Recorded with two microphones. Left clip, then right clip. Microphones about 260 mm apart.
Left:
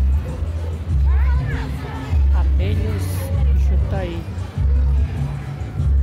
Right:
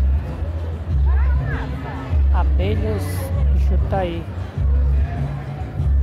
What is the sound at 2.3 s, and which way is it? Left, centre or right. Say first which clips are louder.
Music: right 6 dB; centre.